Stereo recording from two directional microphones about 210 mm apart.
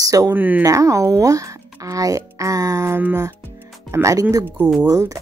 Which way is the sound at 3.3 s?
10° right (ahead or behind).